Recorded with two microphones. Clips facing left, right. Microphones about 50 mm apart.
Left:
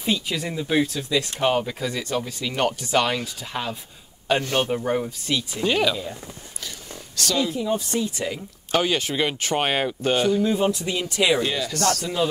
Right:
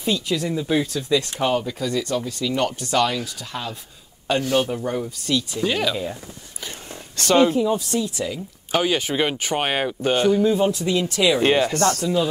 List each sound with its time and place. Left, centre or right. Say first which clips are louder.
0.0 s speech: right 2 dB; centre
5.6 s speech: left 3 dB; centre
7.2 s speech: right 8 dB; right
7.9 s speech: right 1 dB; left
8.7 s speech: right 1 dB; centre
10.8 s speech: right 3 dB; centre
11.3 s speech: right 6 dB; right